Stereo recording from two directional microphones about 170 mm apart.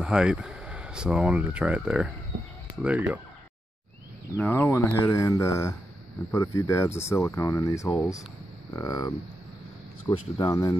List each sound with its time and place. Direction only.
0.0 s speech: 5° right (ahead or behind)
4.4 s speech: 15° left (ahead or behind)